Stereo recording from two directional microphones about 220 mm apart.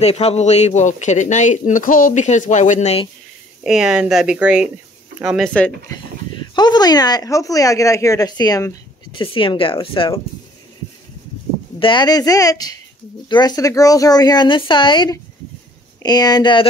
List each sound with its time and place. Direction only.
0.0 s speech: 30° left (ahead or behind)
3.6 s speech: 5° right (ahead or behind)
6.5 s speech: 20° left (ahead or behind)
11.8 s speech: 20° left (ahead or behind)